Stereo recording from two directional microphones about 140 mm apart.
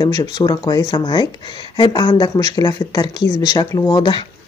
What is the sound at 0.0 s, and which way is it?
Speech, 25° left (ahead or behind).